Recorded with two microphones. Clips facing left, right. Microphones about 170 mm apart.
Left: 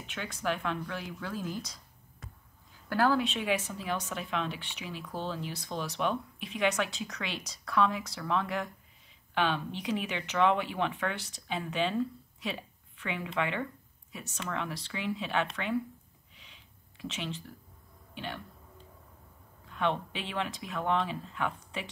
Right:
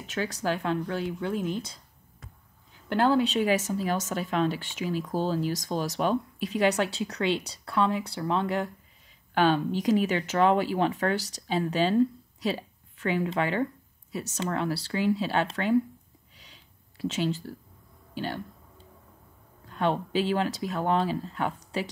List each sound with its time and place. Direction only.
0.0 s speech: 35° right (ahead or behind)
2.9 s speech: 25° right (ahead or behind)
9.3 s speech: 40° right (ahead or behind)
16.3 s a sound: 35° right (ahead or behind)
18.1 s speech: 35° right (ahead or behind)
19.6 s speech: 35° right (ahead or behind)